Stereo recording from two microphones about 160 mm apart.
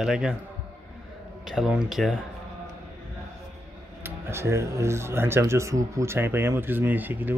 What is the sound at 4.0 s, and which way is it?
Speech, 15° right (ahead or behind).